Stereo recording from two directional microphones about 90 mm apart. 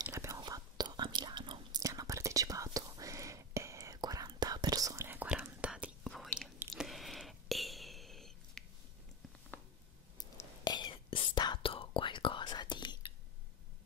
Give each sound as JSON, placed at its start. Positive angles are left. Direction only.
{"t": 0.0, "sound": "whispering", "side_deg": -40}
{"t": 0.4, "sound": "whispering", "side_deg": -50}
{"t": 1.8, "sound": "whispering", "side_deg": -35}
{"t": 4.3, "sound": "whispering", "side_deg": -55}
{"t": 5.0, "sound": "whispering", "side_deg": -20}
{"t": 6.0, "sound": "chewing", "side_deg": 0}
{"t": 6.7, "sound": "a sound", "side_deg": 0}
{"t": 10.6, "sound": "whispering", "side_deg": 50}
{"t": 10.9, "sound": "whispering", "side_deg": 70}